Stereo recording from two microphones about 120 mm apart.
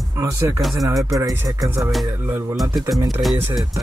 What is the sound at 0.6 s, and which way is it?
Speech, centre (ahead or behind).